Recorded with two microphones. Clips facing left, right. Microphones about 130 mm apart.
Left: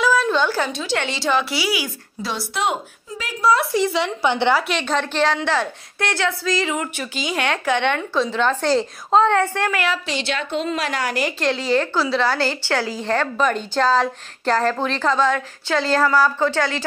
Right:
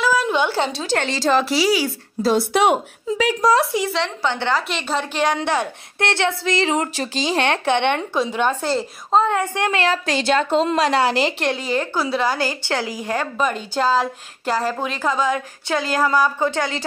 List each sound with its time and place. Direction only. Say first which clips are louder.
0.0 s a sound: left 1 dB; 10° right (ahead or behind); by 0.8 s 25° right (ahead or behind)
0.8 s a woman's voice: right 3 dB; 40° right (ahead or behind)
2.3 s speech: right 6 dB; 60° right (ahead or behind)
3.9 s a woman's voice: left 2 dB; 10° left (ahead or behind)
4.6 s a woman's voice: left 2 dB; 5° right (ahead or behind)
8.6 s a woman's voice: left 3 dB; 5° right (ahead or behind)
10.0 s a woman's voice: right 6 dB; 45° right (ahead or behind)
10.8 s a woman's voice: right 6 dB; 30° right (ahead or behind)
11.5 s a woman's voice: left 2 dB; 15° right (ahead or behind)